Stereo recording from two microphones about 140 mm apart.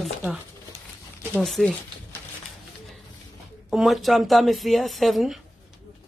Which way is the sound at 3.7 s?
Centre (ahead or behind).